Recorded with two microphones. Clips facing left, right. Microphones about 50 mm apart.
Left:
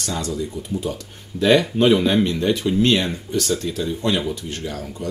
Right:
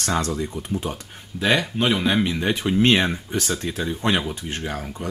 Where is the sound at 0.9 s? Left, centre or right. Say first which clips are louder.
Left 3 dB; right.